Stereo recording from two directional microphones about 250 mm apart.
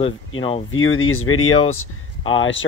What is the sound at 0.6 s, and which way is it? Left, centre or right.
Speech, left.